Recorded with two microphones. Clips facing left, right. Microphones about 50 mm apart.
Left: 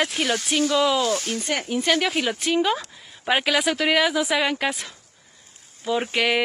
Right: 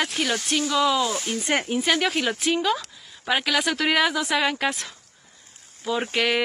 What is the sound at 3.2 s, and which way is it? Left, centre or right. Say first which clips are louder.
A woman's voice: left 2 dB; centre.